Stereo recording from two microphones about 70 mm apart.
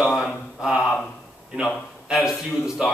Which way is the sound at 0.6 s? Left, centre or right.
Centre.